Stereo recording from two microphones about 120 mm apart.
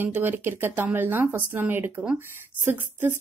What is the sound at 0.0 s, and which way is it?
A woman's voice, 15° right (ahead or behind).